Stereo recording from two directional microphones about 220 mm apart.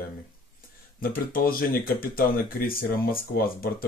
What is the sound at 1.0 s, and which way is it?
Speech, 40° left (ahead or behind).